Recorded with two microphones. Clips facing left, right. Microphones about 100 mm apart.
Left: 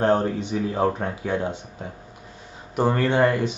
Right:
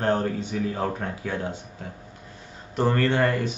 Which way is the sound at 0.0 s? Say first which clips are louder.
Left 4 dB; 20° left (ahead or behind).